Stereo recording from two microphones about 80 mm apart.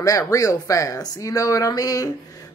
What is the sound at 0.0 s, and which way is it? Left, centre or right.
A woman's voice, left.